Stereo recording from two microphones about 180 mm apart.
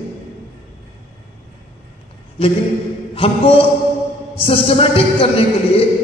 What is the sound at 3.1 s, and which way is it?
A man's voice, 30° left (ahead or behind).